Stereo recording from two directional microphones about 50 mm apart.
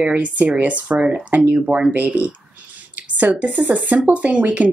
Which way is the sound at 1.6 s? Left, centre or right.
Centre.